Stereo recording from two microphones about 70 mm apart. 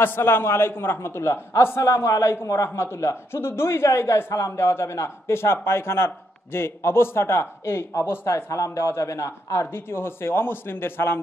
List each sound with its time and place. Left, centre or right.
0.0 s a man's voice: left